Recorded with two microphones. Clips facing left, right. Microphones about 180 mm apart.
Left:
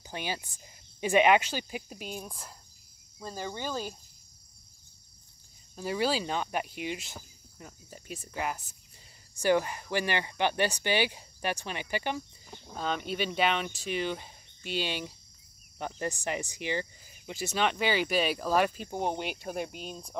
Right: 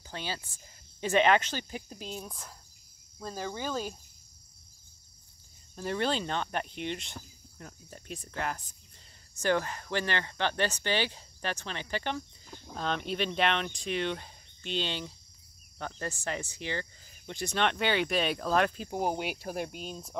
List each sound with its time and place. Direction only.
0.0 s speech: 15° left (ahead or behind)
5.8 s speech: 5° left (ahead or behind)